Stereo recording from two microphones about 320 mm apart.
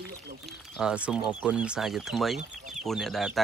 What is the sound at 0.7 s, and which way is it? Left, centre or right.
Speech, centre.